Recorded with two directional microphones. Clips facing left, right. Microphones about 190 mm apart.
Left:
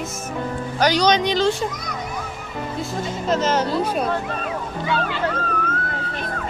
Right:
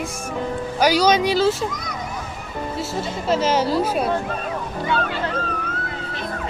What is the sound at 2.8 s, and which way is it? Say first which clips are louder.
Speech: even; 10° right (ahead or behind).